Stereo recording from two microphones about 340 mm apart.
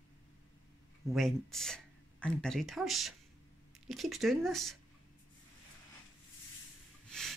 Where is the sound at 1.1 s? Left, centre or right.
Centre.